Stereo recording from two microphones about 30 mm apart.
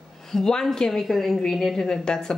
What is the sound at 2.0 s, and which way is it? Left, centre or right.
Speech, left.